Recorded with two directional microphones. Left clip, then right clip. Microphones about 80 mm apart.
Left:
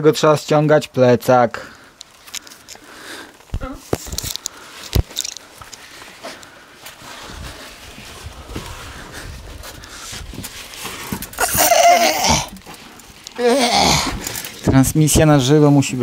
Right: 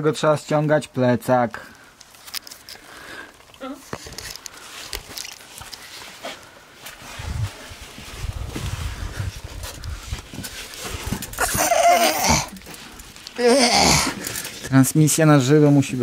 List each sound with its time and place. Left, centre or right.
0.0 s speech: left
11.3 s a sound: centre
14.7 s speech: centre
15.6 s speech: centre